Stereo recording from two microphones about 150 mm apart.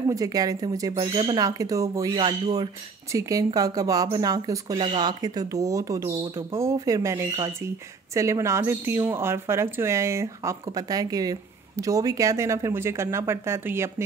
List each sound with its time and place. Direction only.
0.1 s speech: 25° right (ahead or behind)
0.9 s speech: 35° right (ahead or behind); by 14.0 s 15° right (ahead or behind)